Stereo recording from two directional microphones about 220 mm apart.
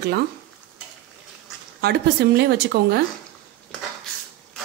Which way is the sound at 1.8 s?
50° right (ahead or behind).